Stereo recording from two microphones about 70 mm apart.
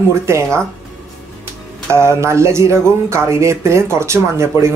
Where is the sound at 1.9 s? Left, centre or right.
Right.